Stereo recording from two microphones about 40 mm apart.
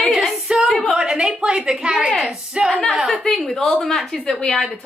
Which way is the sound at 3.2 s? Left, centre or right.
Centre.